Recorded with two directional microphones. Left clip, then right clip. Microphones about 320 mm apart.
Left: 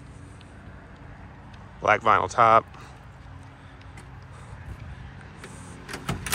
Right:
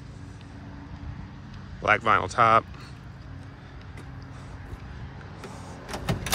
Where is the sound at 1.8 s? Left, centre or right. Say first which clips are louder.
Left 2 dB; centre.